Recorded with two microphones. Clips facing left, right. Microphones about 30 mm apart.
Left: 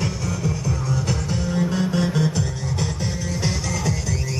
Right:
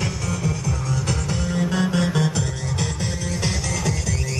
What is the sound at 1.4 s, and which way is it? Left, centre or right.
Music, centre.